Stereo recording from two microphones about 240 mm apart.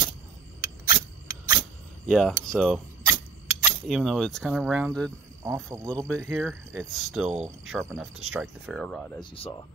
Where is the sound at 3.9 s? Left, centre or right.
Centre.